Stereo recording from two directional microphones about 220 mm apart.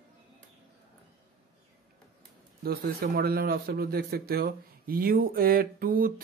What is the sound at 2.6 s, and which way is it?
A man's voice, 45° right (ahead or behind).